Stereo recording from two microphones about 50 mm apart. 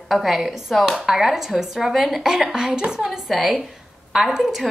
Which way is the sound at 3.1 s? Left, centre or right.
Centre.